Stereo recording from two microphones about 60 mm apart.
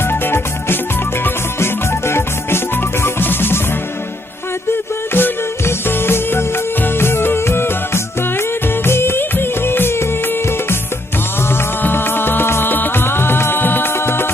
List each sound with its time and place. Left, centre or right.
0.0 s music: left
5.1 s music: left